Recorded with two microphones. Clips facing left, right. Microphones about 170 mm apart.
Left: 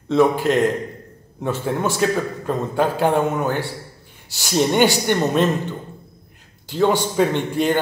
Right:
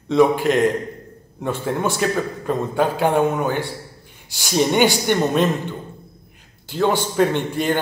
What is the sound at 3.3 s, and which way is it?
A man's voice, 5° left (ahead or behind).